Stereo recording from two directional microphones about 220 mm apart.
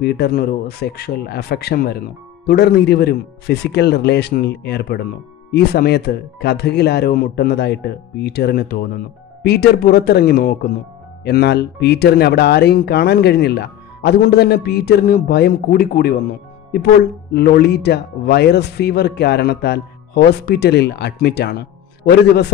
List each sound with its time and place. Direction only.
0.0 s speech: 45° left (ahead or behind)